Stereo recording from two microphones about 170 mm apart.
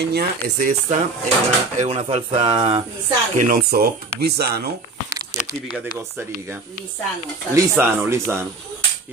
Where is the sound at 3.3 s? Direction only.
55° right (ahead or behind); by 4.6 s 70° right (ahead or behind).